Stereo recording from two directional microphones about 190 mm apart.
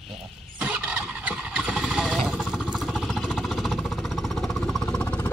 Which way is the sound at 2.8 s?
5° right (ahead or behind).